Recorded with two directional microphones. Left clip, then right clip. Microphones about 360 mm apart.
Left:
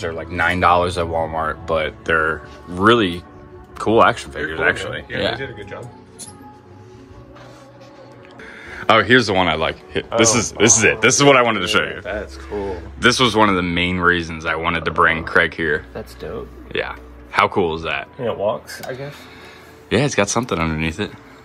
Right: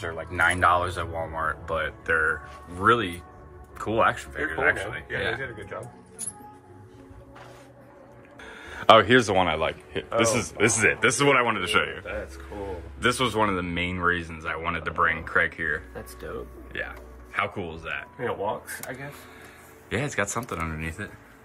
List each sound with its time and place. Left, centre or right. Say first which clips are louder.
0.0 s speech: left 4 dB; centre
8.5 s speech: left 1 dB; centre
13.0 s speech: left 9 dB; centre
16.3 s speech: left 6 dB; left
16.7 s speech: left 10 dB; centre
19.9 s speech: left 10 dB; centre